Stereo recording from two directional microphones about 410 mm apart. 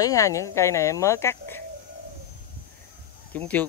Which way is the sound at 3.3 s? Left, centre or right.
Centre.